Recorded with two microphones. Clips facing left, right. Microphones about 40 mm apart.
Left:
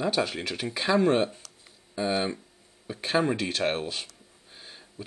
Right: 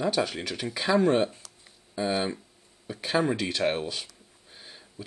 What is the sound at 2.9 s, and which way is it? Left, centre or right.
Speech, left.